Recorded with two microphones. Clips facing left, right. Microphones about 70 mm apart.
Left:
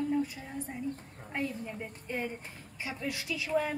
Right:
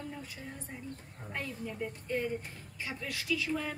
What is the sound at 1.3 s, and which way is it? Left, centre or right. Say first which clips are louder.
A woman's voice: left 4 dB; left.